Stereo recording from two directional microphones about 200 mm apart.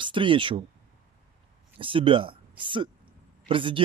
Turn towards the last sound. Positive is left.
turn(degrees=-25)  # may be behind; listen again after turning